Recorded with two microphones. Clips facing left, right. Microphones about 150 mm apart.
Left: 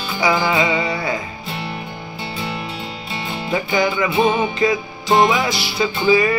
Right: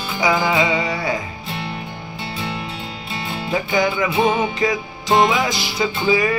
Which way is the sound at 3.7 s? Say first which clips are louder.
Left 1 dB; 15° right (ahead or behind).